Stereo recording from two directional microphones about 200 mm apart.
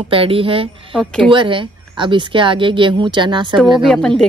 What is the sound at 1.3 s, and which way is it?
Speech, 25° right (ahead or behind).